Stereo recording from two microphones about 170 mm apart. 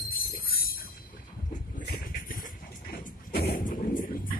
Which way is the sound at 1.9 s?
55° left (ahead or behind).